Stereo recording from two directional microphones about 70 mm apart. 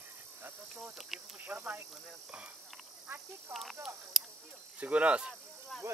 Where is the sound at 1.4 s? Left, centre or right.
Right.